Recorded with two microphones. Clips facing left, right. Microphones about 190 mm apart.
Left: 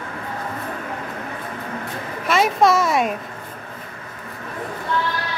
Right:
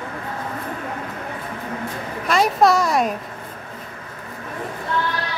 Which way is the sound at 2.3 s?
Centre (ahead or behind).